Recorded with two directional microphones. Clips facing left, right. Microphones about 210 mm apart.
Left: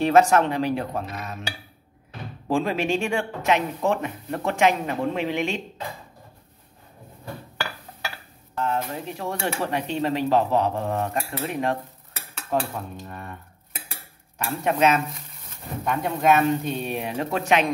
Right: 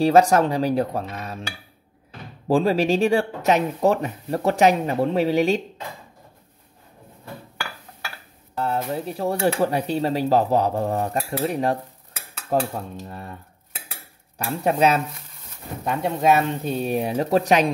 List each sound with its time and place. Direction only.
0.0 s speech: 35° right (ahead or behind)
2.4 s speech: 35° right (ahead or behind)
8.5 s speech: 35° right (ahead or behind)
14.4 s speech: 35° right (ahead or behind)